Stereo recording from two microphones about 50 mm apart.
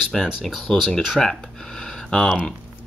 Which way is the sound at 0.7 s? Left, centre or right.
Centre.